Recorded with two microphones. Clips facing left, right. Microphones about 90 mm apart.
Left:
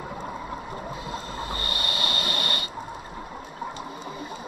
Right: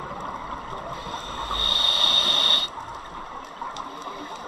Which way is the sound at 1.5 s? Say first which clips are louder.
Right 3 dB; 15° left (ahead or behind).